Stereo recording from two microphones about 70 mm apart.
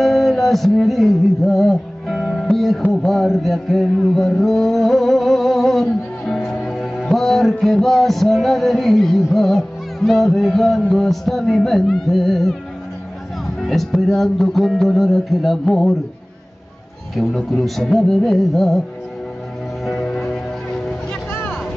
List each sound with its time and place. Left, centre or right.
0.0 s music: centre
2.9 s mantra: centre
7.1 s music: centre
13.6 s music: centre
17.1 s music: centre
19.8 s music: centre
21.3 s vehicle: left